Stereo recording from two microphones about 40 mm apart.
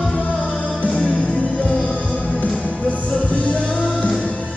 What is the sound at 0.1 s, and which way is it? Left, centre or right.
Music, left.